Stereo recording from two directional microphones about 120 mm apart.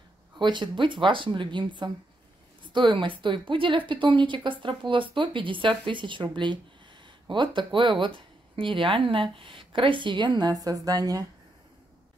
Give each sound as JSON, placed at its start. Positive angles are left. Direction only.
{"t": 0.4, "sound": "speech", "side_deg": -40}